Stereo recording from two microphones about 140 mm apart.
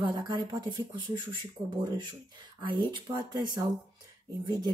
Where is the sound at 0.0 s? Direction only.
35° right (ahead or behind).